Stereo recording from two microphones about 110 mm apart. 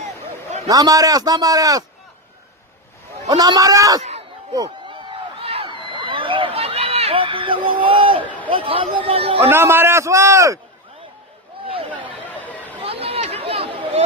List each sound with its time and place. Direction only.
0.7 s a man's voice: 35° right (ahead or behind)
3.3 s a man's voice: 40° right (ahead or behind)
5.4 s a sound: 60° right (ahead or behind)
5.7 s a sound: 50° right (ahead or behind)
8.5 s a man's voice: 55° right (ahead or behind)
9.5 s a man's voice: 20° right (ahead or behind)
11.6 s a sound: 60° right (ahead or behind)
12.4 s chatter: 15° left (ahead or behind)
12.8 s chatter: 60° right (ahead or behind)